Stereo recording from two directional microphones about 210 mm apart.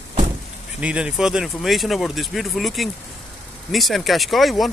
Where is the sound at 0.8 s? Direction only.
5° right (ahead or behind).